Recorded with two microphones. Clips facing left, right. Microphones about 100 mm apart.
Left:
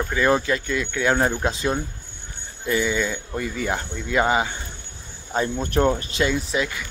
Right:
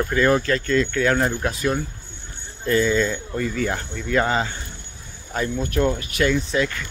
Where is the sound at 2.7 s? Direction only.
10° left (ahead or behind).